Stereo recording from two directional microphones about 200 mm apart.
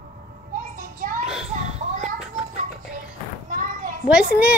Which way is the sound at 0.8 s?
40° right (ahead or behind).